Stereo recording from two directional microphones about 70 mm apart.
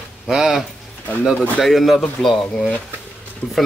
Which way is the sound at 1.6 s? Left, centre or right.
Centre.